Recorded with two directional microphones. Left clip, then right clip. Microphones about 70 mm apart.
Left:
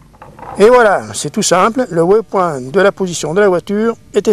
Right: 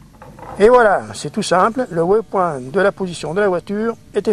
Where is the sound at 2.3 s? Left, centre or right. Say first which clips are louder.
Left 3 dB; centre.